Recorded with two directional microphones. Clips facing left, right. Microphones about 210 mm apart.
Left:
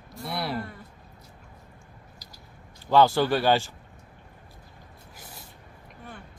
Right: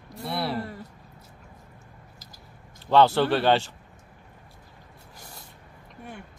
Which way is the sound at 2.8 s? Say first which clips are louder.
Right 1 dB; 5° left (ahead or behind).